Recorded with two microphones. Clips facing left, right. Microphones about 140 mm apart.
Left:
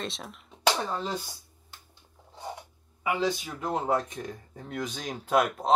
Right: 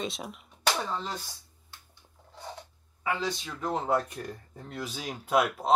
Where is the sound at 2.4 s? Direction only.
15° left (ahead or behind).